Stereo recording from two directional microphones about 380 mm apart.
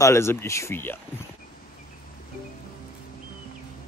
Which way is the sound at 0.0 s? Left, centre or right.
Centre.